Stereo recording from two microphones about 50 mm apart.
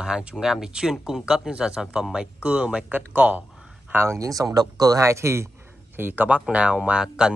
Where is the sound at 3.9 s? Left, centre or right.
Right.